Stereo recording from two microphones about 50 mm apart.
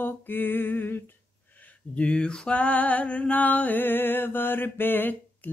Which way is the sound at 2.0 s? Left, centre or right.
Centre.